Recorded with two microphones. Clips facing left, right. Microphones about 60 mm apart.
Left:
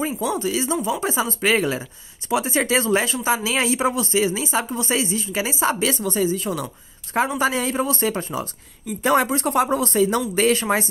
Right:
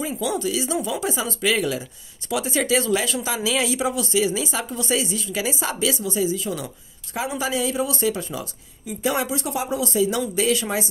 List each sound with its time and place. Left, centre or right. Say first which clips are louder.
0.0 s speech: left 1 dB; left